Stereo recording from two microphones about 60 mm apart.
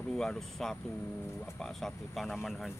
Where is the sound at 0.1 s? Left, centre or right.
Centre.